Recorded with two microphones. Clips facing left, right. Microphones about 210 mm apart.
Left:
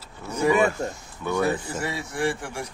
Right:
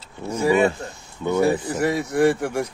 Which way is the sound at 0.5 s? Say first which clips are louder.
Right 2 dB; 30° right (ahead or behind).